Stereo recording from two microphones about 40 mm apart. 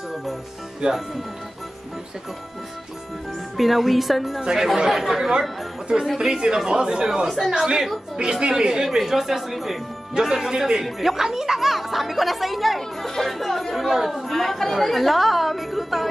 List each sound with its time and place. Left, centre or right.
0.8 s a woman's voice: right
3.5 s speech: centre
4.4 s speech: centre
6.1 s a woman's voice: centre
8.8 s speech: centre